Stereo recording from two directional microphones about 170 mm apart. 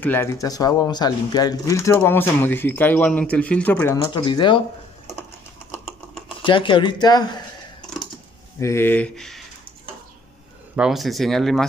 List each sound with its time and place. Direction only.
0.0 s speech: 15° left (ahead or behind)
4.1 s speech: 25° left (ahead or behind)
6.4 s speech: 30° left (ahead or behind)
8.5 s speech: 15° left (ahead or behind)
10.8 s speech: centre (ahead or behind)